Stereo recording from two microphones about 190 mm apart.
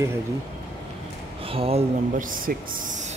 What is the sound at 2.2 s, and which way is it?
Speech, 45° right (ahead or behind).